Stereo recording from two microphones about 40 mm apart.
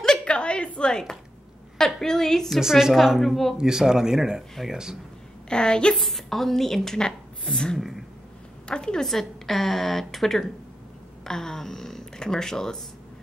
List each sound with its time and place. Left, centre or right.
0.2 s a sound: left
2.0 s a woman's voice: centre
2.5 s a woman's voice: centre
3.5 s speech: centre
5.5 s a woman's voice: left
5.9 s a woman's voice: centre
8.6 s a woman's voice: left
9.0 s a woman's voice: centre